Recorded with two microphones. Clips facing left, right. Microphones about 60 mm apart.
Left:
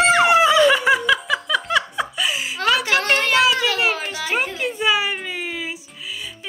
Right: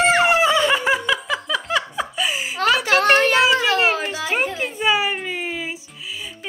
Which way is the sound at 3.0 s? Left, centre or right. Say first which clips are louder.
Right 4 dB; right.